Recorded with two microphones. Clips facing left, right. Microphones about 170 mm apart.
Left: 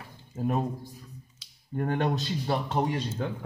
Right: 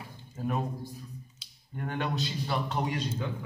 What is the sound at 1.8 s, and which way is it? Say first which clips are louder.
A man's voice: left 5 dB; 45° left (ahead or behind).